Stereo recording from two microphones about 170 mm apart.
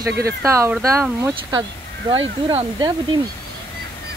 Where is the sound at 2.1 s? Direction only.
30° right (ahead or behind).